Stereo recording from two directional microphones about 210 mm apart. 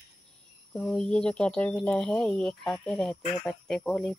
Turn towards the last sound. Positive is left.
turn(degrees=5)  # may be behind; listen again after turning